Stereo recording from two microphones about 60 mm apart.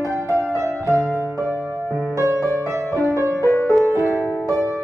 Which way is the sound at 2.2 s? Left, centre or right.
Right.